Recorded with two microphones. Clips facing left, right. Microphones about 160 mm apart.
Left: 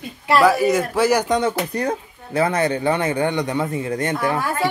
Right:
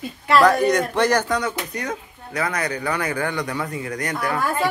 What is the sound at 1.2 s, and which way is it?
Speech, 25° left (ahead or behind).